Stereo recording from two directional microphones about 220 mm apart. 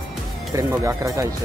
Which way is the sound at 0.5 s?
15° right (ahead or behind).